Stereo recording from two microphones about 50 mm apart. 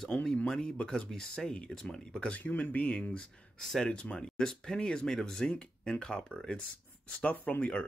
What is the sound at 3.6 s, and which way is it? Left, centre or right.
Speech, centre.